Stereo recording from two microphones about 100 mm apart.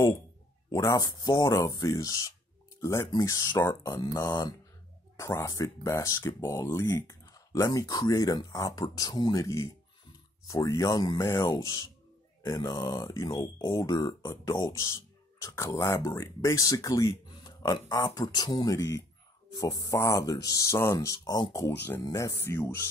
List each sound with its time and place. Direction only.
0.7 s speech: 35° left (ahead or behind)
3.1 s speech: 40° left (ahead or behind)
3.9 s speech: 45° left (ahead or behind)
5.2 s speech: 30° left (ahead or behind)
11.1 s speech: 30° left (ahead or behind)